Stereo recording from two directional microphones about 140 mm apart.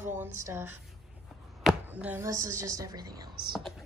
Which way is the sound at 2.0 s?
20° right (ahead or behind).